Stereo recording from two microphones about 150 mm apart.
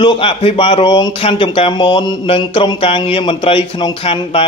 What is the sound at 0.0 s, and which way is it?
Speech, 35° left (ahead or behind).